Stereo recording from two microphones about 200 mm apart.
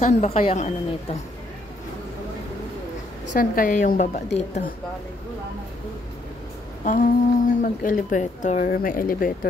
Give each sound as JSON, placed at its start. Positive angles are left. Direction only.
{"t": 0.0, "sound": "a woman's voice", "side_deg": 30}
{"t": 3.3, "sound": "a woman's voice", "side_deg": 45}
{"t": 6.8, "sound": "a woman's voice", "side_deg": 40}